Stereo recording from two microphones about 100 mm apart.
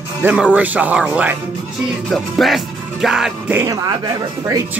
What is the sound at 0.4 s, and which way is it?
Speech, 15° right (ahead or behind).